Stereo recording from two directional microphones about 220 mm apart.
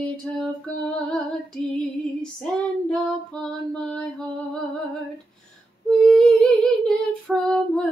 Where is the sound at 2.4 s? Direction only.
5° left (ahead or behind).